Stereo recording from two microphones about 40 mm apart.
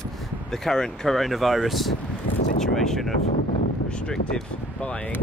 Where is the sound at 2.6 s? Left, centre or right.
Centre.